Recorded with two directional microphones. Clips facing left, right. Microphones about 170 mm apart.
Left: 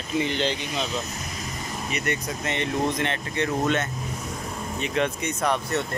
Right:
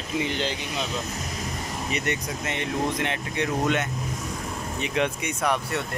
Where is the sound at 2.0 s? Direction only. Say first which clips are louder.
Left 1 dB; 10° right (ahead or behind).